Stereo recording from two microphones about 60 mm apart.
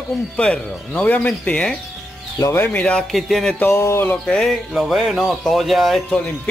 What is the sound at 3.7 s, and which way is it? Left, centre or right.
Speech, left.